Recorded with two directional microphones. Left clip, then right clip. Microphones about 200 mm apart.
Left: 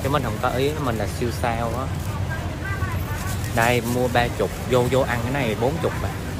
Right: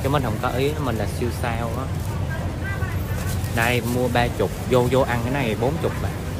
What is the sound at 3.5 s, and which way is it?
Speech, centre (ahead or behind).